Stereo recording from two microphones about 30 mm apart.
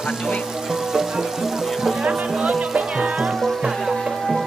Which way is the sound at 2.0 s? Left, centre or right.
Right.